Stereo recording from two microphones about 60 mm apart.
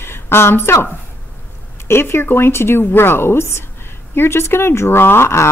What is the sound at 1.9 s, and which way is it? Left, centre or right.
Speech, left.